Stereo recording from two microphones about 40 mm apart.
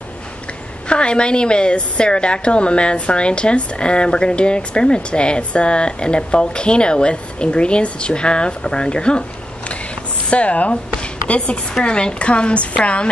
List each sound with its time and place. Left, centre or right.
0.8 s a woman's voice: left
10.3 s a woman's voice: left